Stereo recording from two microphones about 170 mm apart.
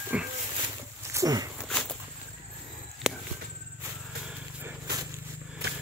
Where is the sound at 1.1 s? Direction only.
20° right (ahead or behind).